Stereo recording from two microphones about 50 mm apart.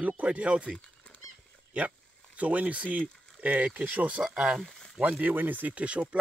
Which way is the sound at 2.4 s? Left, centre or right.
Right.